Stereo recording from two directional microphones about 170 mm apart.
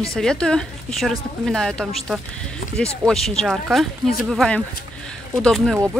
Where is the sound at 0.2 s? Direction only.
5° left (ahead or behind).